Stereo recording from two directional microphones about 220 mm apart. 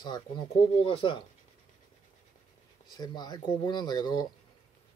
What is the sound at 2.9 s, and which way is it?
Speech, 20° left (ahead or behind).